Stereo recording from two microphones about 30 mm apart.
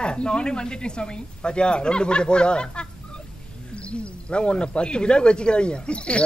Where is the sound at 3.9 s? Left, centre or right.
Left.